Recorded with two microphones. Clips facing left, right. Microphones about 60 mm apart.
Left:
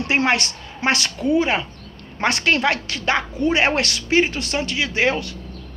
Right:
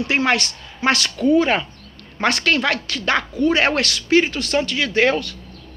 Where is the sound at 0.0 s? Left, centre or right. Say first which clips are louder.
Even; left.